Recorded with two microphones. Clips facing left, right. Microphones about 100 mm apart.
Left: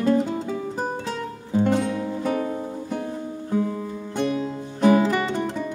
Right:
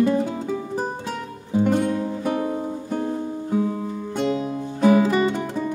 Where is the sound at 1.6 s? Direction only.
15° right (ahead or behind).